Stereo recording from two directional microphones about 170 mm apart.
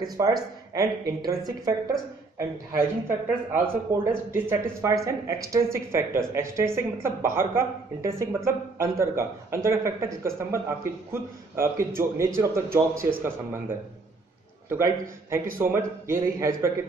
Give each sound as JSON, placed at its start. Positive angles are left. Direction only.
{"t": 0.0, "sound": "speech", "side_deg": -20}
{"t": 2.7, "sound": "speech", "side_deg": -15}